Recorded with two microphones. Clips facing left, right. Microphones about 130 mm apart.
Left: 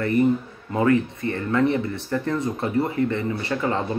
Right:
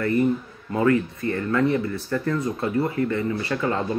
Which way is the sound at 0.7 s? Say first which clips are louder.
Left 1 dB; 25° left (ahead or behind).